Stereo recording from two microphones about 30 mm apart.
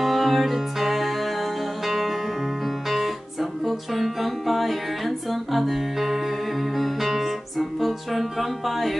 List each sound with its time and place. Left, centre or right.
0.0 s music: centre